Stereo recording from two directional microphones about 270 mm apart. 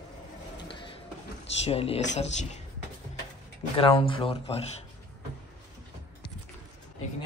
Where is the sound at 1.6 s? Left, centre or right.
Left.